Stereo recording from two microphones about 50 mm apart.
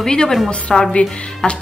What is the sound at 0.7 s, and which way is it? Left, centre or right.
Music, centre.